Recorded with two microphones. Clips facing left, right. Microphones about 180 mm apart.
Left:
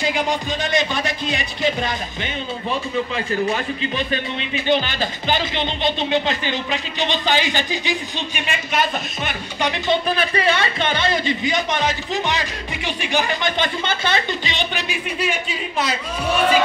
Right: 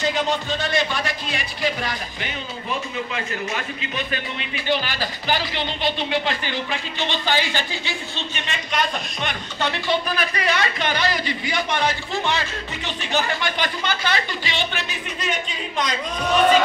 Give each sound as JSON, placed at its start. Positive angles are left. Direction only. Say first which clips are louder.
{"t": 0.0, "sound": "speech", "louder": "left 1 dB", "side_deg": 10}
{"t": 4.1, "sound": "speech", "louder": "left 5 dB", "side_deg": 20}
{"t": 9.7, "sound": "speech", "louder": "left 3 dB", "side_deg": 25}